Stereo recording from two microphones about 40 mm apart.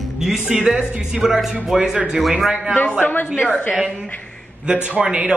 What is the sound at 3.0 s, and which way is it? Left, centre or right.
Speech, left.